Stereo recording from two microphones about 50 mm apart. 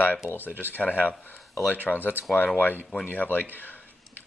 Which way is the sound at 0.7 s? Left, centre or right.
Left.